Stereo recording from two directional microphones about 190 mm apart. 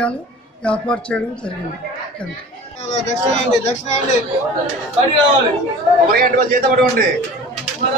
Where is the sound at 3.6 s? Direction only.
35° left (ahead or behind).